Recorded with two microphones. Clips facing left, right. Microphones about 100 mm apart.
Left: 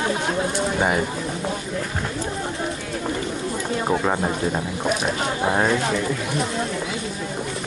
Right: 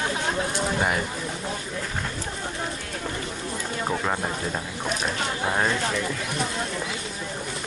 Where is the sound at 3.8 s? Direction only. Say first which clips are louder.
Left 5 dB; 15° left (ahead or behind).